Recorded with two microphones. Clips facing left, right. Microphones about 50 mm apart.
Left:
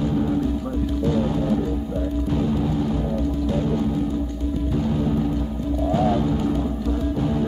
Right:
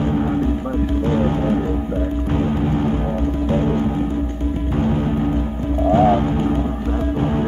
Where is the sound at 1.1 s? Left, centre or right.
Right.